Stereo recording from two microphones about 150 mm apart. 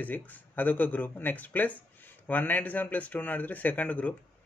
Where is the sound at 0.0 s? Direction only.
10° left (ahead or behind).